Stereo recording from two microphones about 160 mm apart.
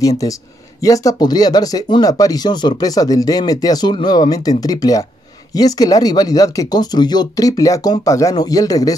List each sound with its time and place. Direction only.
0.8 s speech: 20° left (ahead or behind)